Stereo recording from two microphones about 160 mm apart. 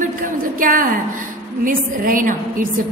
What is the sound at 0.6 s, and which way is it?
A woman's voice, 60° right (ahead or behind).